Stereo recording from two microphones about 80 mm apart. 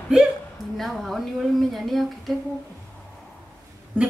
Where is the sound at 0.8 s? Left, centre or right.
Centre.